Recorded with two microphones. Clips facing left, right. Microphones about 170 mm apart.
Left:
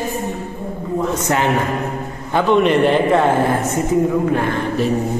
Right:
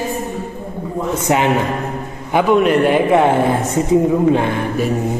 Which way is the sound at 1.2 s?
15° right (ahead or behind).